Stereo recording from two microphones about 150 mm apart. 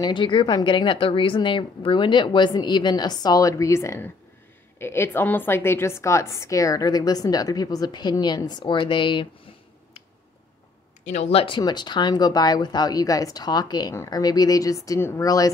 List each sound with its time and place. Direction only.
0.0 s a woman's voice: 35° left (ahead or behind)
11.1 s a woman's voice: 50° left (ahead or behind); by 15.5 s 25° left (ahead or behind)